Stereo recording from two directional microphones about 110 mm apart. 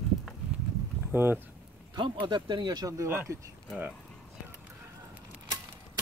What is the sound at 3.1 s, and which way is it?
Speech, 20° right (ahead or behind).